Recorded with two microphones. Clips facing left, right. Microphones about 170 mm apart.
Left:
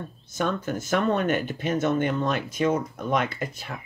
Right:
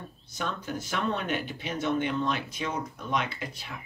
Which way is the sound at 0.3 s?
50° left (ahead or behind).